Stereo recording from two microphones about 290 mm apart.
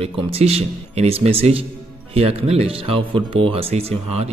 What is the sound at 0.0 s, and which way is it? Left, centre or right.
Speech, centre.